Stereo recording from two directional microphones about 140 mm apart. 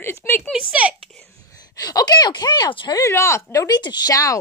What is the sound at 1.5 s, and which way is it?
Speech, 25° left (ahead or behind).